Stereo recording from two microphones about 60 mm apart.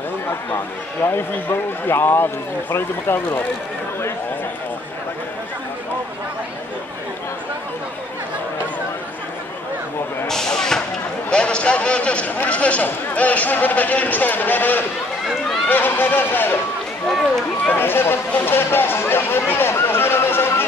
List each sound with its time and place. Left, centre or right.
1.0 s speech: left
10.2 s a sound: centre
11.2 s a man's voice: centre; by 16.5 s left
17.7 s speech: left